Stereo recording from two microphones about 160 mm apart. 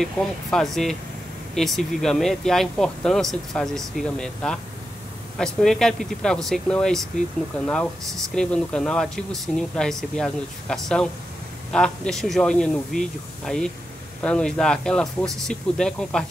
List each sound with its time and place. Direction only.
0.0 s speech: centre (ahead or behind)
14.2 s speech: 5° left (ahead or behind)